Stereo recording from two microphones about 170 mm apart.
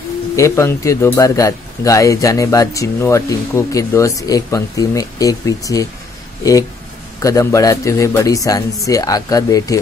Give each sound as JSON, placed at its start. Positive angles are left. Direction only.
{"t": 0.4, "sound": "a man's voice", "side_deg": 15}
{"t": 7.2, "sound": "a man's voice", "side_deg": 20}